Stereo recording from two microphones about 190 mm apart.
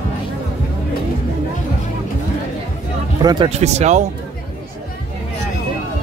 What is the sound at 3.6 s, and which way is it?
Speech, 35° right (ahead or behind).